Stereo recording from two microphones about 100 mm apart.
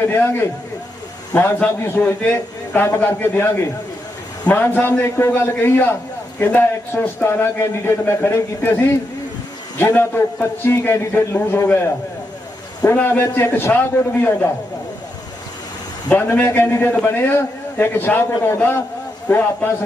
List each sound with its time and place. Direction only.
0.0 s a man's voice: 20° left (ahead or behind)
9.8 s a man's voice: 25° left (ahead or behind)
16.1 s a man's voice: 20° left (ahead or behind)